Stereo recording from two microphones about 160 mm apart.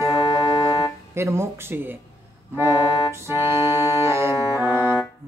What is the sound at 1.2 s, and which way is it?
Speech, 15° right (ahead or behind).